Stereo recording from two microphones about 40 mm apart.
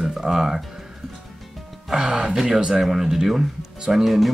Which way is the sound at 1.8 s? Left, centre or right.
Centre.